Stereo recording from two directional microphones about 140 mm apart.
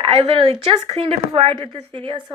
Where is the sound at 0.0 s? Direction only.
40° right (ahead or behind).